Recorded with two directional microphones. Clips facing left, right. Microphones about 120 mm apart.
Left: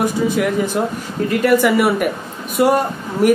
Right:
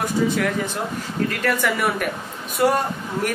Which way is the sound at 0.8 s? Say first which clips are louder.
Left 5 dB; 20° left (ahead or behind).